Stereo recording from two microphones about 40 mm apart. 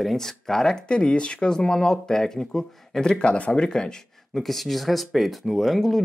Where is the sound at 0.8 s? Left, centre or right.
Left.